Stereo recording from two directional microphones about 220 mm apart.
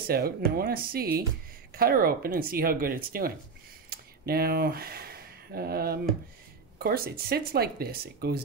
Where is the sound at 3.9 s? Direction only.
45° right (ahead or behind).